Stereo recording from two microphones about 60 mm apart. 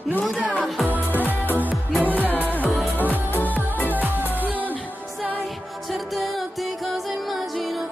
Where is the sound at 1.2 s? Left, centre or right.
Left.